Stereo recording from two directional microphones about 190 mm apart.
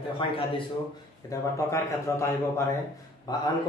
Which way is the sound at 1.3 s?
15° left (ahead or behind).